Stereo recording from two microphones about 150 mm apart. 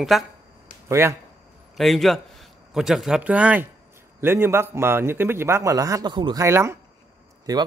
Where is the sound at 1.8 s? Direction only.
Centre (ahead or behind); by 6.4 s 30° right (ahead or behind).